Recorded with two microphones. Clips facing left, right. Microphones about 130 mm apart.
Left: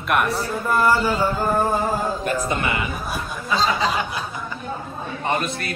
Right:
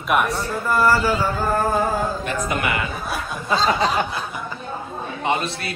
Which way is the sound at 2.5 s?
25° left (ahead or behind).